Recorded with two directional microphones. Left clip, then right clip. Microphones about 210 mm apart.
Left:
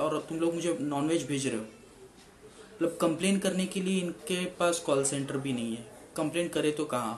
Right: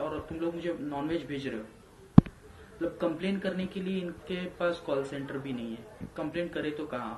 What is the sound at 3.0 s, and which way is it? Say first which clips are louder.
Speech: left 3 dB; 5° left (ahead or behind).